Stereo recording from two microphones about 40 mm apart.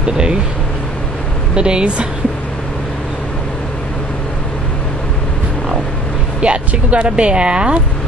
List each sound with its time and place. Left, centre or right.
0.0 s speech: right
1.5 s speech: right
6.4 s speech: right